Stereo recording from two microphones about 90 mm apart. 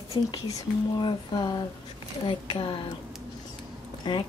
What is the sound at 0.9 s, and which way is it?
Speech, 55° left (ahead or behind).